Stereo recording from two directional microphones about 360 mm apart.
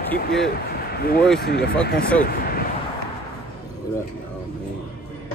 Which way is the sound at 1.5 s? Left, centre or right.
Left.